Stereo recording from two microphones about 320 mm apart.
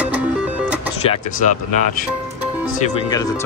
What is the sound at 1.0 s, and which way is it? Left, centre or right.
Vehicle, left.